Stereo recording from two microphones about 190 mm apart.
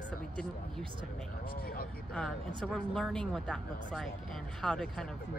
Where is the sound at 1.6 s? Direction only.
50° left (ahead or behind).